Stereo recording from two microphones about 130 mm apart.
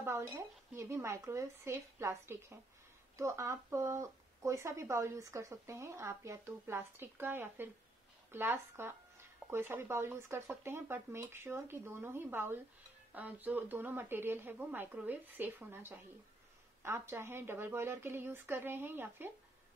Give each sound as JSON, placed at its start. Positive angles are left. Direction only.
{"t": 0.0, "sound": "speech", "side_deg": -20}